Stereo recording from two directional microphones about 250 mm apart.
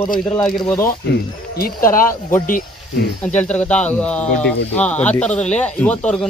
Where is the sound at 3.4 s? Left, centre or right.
Centre.